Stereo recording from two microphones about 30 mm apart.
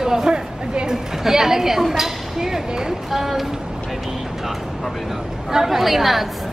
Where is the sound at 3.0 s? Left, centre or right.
Centre.